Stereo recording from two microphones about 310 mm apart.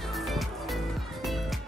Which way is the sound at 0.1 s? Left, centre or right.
Centre.